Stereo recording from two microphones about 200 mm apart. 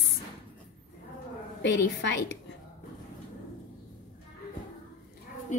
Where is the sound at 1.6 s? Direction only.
60° left (ahead or behind).